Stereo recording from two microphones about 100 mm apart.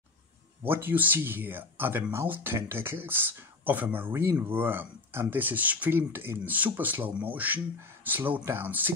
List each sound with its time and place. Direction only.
0.7 s speech: 20° right (ahead or behind)